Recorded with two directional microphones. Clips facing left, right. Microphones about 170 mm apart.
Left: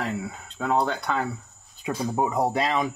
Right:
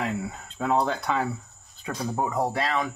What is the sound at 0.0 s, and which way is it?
Speech, centre (ahead or behind).